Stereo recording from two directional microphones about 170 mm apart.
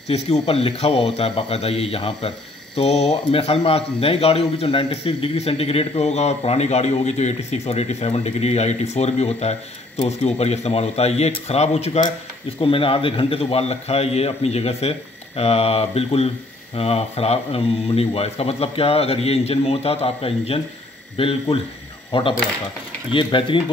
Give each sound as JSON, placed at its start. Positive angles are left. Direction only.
{"t": 0.1, "sound": "speech", "side_deg": 35}